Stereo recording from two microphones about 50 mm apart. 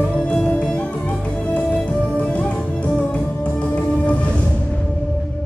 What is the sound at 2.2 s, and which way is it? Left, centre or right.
Music, left.